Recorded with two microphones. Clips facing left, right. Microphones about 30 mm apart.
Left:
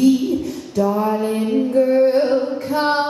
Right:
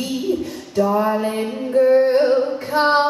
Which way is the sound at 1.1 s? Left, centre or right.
Centre.